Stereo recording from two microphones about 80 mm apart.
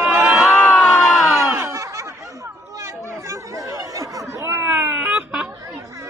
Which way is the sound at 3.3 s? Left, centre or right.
Right.